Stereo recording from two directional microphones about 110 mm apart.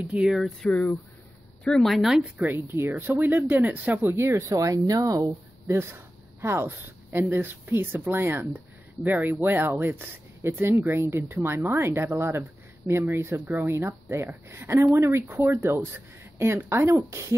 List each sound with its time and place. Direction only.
0.1 s speech: 5° right (ahead or behind)
0.7 s speech: 15° left (ahead or behind); by 2.2 s centre (ahead or behind)
2.3 s speech: 15° right (ahead or behind)